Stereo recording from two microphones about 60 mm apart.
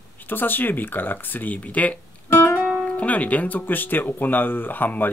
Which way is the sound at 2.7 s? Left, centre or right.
Left.